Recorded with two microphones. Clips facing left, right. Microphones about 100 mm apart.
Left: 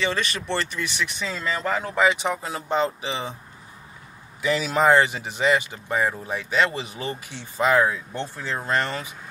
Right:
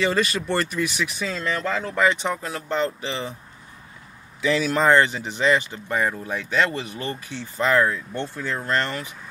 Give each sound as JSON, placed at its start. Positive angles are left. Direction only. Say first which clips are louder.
{"t": 0.0, "sound": "speech", "louder": "right 4 dB", "side_deg": -5}
{"t": 1.6, "sound": "speech", "louder": "left 1 dB", "side_deg": 15}
{"t": 4.4, "sound": "speech", "louder": "right 1 dB", "side_deg": 10}